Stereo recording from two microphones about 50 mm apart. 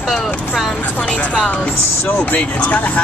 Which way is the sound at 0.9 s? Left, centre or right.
Left.